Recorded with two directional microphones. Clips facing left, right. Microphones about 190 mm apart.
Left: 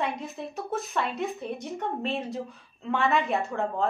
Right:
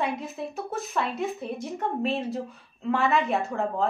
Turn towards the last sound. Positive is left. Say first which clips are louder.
# right 1 dB
turn(degrees=0)  # may be behind; listen again after turning